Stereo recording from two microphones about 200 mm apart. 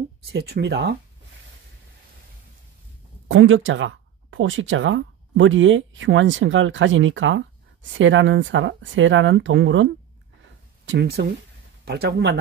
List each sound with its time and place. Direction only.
0.2 s speech: 55° right (ahead or behind)
3.3 s speech: 70° right (ahead or behind)
10.9 s speech: 55° right (ahead or behind)